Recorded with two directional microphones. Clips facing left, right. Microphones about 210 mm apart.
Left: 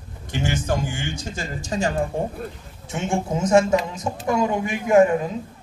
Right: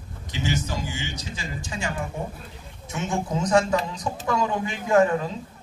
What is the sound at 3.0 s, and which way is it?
A man's voice, 25° left (ahead or behind).